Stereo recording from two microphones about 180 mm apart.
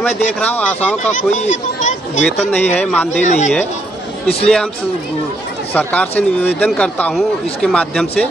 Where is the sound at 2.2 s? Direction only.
5° left (ahead or behind).